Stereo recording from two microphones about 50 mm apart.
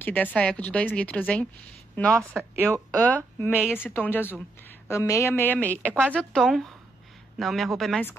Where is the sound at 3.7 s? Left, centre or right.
Left.